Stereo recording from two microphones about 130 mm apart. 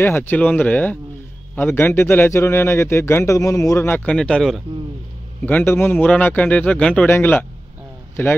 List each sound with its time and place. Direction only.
0.0 s a man's voice: 15° left (ahead or behind)
5.4 s a man's voice: 15° left (ahead or behind)